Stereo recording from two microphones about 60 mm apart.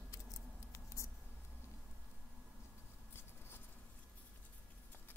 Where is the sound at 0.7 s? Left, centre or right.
Left.